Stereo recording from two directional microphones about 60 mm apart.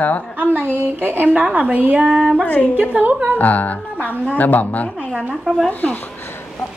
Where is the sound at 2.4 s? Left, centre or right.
Left.